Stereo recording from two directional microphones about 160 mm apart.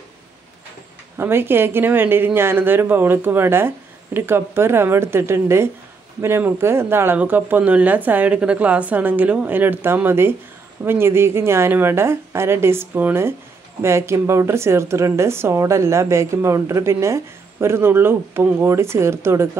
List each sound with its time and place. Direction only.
1.1 s speech: 15° right (ahead or behind)